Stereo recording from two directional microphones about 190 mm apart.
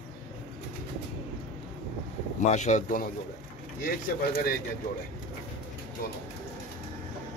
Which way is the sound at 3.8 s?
55° left (ahead or behind).